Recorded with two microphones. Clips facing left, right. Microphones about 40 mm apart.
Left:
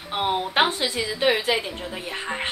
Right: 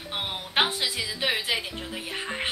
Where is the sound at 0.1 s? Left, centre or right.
Centre.